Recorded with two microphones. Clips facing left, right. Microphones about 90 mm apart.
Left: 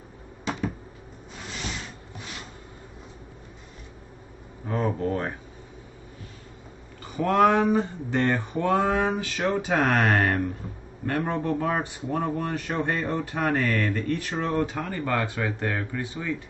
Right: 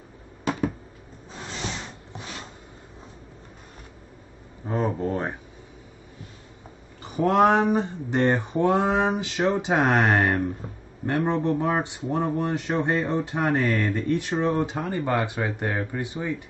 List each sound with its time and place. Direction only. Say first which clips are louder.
4.6 s speech: right 1 dB; 15° right (ahead or behind)
7.1 s speech: right 1 dB; 20° right (ahead or behind)